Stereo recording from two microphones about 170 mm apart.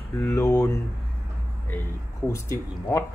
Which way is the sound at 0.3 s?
15° left (ahead or behind).